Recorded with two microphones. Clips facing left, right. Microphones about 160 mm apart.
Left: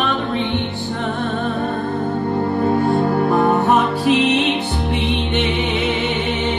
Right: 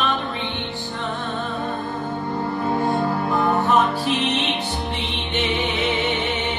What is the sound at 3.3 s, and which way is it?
Music, 55° left (ahead or behind).